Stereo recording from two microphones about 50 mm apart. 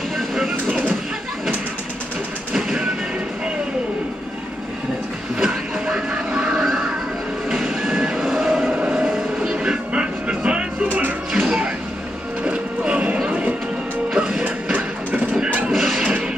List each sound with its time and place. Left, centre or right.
0.3 s a sound: centre
2.5 s music: centre
5.4 s music: centre
7.4 s vehicle: centre; by 11.1 s right
11.3 s television: centre
12.4 s music: right
14.1 s music: centre
14.4 s music: right
15.4 s a sound: right
15.7 s music: centre